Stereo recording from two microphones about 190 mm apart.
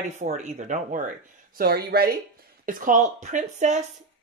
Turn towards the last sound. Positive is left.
turn(degrees=-40)  # may be behind; listen again after turning